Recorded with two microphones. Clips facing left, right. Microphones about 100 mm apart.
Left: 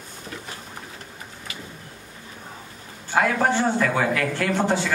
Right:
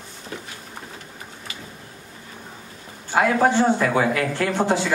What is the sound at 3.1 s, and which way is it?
Speech, 15° right (ahead or behind).